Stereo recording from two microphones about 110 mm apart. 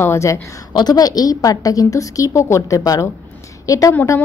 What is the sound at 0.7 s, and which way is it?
A woman's voice, 40° left (ahead or behind).